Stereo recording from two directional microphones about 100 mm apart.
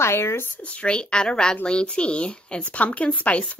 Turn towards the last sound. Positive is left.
turn(degrees=15)  # may be behind; listen again after turning